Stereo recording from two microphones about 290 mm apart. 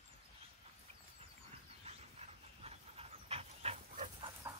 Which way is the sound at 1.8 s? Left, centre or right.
Right.